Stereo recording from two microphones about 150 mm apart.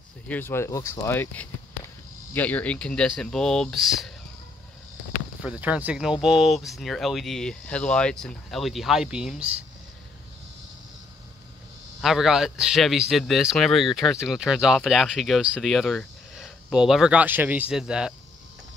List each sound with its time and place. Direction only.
0.3 s speech: 15° left (ahead or behind); by 4.1 s centre (ahead or behind)
5.4 s speech: 10° right (ahead or behind)
12.0 s speech: centre (ahead or behind)